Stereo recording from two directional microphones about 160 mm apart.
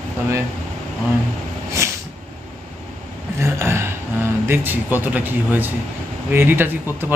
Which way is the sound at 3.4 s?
15° right (ahead or behind).